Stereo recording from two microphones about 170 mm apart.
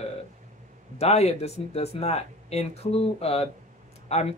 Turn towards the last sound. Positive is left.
turn(degrees=40)  # may be behind; listen again after turning